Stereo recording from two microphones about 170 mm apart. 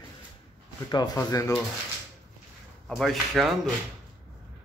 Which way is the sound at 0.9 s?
20° left (ahead or behind).